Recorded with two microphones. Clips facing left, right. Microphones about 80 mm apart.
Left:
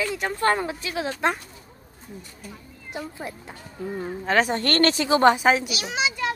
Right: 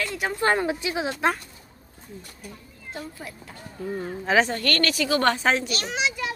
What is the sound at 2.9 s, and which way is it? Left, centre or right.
Speech, left.